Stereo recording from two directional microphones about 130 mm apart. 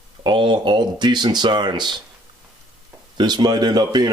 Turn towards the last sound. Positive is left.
turn(degrees=-30)  # may be behind; listen again after turning